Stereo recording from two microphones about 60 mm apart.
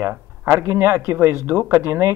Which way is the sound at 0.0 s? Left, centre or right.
Right.